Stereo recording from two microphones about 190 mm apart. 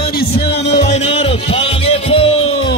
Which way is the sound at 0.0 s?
50° left (ahead or behind).